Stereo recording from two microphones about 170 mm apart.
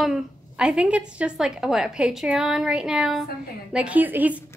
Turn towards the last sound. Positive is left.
turn(degrees=-10)  # may be behind; listen again after turning